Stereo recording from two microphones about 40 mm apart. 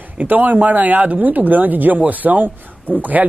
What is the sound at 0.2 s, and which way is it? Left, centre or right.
Speech, right.